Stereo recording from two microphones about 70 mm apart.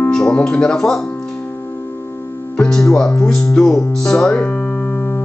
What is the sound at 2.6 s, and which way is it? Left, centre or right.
Music, centre.